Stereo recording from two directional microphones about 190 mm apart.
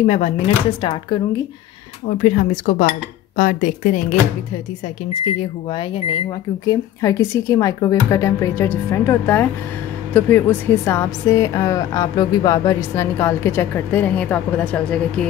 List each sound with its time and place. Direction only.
0.0 s speech: 35° left (ahead or behind)
2.0 s speech: 45° left (ahead or behind)
5.4 s a woman's voice: 30° left (ahead or behind); by 15.2 s 5° left (ahead or behind)